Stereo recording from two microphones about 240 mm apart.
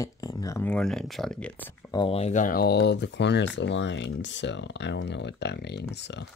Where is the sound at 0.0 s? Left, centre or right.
Centre; by 6.2 s left.